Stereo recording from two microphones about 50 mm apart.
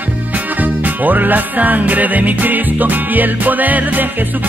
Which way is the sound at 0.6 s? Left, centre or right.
Right.